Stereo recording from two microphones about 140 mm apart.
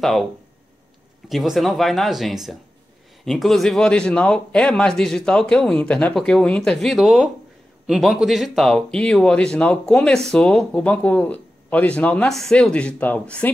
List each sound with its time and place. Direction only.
0.0 s a man's voice: centre (ahead or behind)
1.3 s a man's voice: centre (ahead or behind)